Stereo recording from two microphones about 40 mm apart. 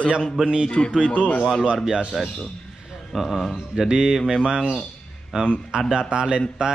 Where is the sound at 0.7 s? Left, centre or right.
Left.